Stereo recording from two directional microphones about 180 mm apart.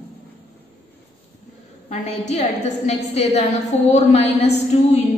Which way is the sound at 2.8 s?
35° left (ahead or behind).